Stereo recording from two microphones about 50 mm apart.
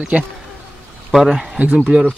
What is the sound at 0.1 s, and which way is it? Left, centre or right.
Speech, right.